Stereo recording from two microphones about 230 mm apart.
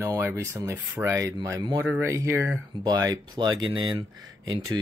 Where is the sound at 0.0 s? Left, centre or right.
Centre.